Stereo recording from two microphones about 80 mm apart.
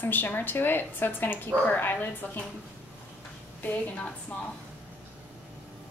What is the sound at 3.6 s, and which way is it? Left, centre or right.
Speech, centre.